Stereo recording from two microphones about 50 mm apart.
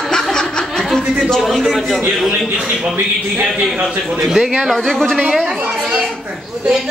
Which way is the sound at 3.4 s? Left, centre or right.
Centre.